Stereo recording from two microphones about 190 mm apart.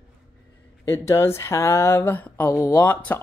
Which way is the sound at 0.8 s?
15° left (ahead or behind).